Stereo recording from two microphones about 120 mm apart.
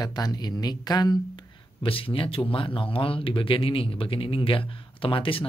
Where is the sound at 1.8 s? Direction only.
50° left (ahead or behind).